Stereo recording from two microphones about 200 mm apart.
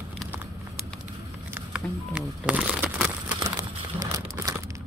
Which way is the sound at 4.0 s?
15° right (ahead or behind).